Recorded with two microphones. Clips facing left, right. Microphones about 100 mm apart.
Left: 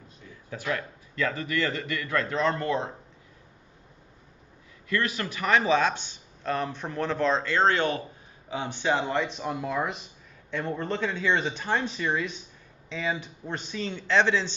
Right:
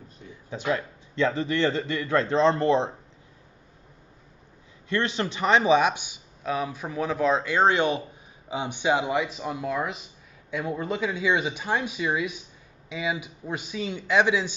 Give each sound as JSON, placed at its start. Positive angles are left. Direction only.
{"t": 0.3, "sound": "a man's voice", "side_deg": -20}
{"t": 4.8, "sound": "speech", "side_deg": -25}